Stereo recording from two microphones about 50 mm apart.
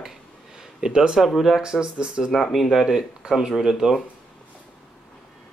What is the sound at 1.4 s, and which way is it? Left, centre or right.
Speech, centre.